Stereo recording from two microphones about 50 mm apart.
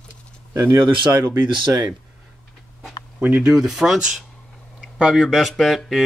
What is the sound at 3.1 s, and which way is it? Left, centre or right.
Speech, right.